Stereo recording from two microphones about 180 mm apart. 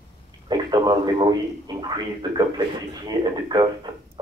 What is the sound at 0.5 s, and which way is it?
A man's voice, 25° right (ahead or behind).